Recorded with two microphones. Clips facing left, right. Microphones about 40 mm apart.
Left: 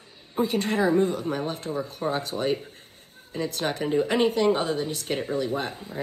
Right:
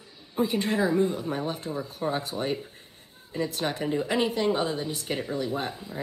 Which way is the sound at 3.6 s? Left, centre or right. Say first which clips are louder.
Left 4 dB; centre.